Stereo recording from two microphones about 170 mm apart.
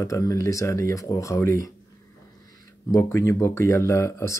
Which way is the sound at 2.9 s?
15° left (ahead or behind).